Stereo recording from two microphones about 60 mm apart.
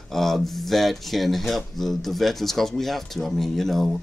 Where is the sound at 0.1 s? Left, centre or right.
Centre.